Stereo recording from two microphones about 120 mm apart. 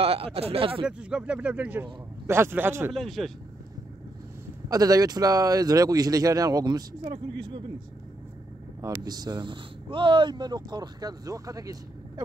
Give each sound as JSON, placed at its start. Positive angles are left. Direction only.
{"t": 0.0, "sound": "speech", "side_deg": -50}
{"t": 0.8, "sound": "speech", "side_deg": -10}
{"t": 2.9, "sound": "speech", "side_deg": 0}
{"t": 4.6, "sound": "speech", "side_deg": -30}
{"t": 9.0, "sound": "speech", "side_deg": -35}